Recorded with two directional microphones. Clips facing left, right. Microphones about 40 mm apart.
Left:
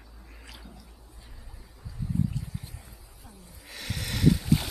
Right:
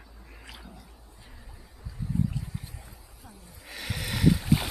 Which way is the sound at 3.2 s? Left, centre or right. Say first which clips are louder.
Right 1 dB; centre.